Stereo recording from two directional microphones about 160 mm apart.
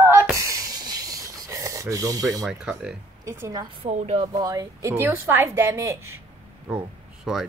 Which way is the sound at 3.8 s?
45° right (ahead or behind).